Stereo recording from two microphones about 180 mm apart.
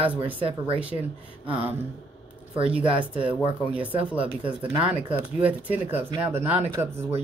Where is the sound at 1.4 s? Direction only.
30° right (ahead or behind).